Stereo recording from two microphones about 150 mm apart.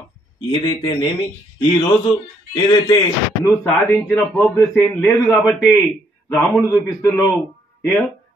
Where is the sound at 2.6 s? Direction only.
30° left (ahead or behind).